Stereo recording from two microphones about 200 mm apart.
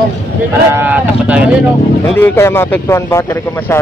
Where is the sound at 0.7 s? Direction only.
10° right (ahead or behind).